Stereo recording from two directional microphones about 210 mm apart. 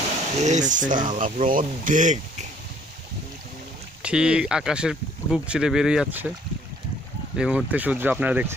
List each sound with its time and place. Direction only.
0.4 s speech: 35° right (ahead or behind)
4.0 s speech: 5° right (ahead or behind)
7.3 s speech: 5° right (ahead or behind)